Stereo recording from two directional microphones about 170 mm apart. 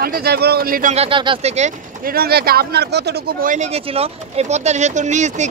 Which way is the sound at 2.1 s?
65° right (ahead or behind).